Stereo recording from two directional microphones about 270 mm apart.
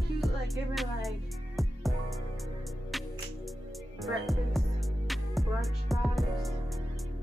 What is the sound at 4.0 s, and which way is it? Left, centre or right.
Music, centre.